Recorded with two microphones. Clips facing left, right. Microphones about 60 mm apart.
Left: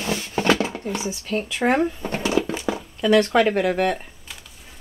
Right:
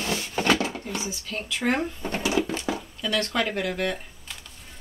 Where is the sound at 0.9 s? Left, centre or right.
Left.